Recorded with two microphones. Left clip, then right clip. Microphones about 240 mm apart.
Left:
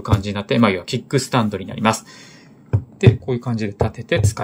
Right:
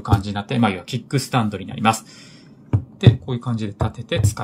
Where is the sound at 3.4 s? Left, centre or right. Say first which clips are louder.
Left 4 dB; centre.